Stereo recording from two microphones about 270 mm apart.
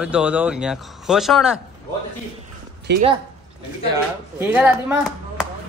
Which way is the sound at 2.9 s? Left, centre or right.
Right.